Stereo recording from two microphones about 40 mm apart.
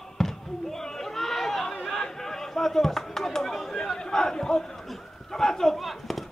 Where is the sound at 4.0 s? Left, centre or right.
Centre.